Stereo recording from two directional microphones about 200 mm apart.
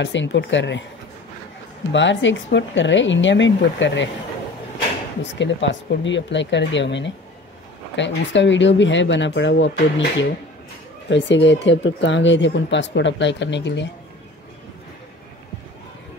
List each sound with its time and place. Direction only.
0.0 s speech: 65° left (ahead or behind)
1.9 s speech: 65° left (ahead or behind)
5.2 s speech: 65° left (ahead or behind)
11.1 s speech: 65° left (ahead or behind)